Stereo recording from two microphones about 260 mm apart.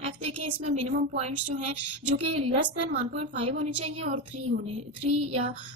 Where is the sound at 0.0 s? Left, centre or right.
Right.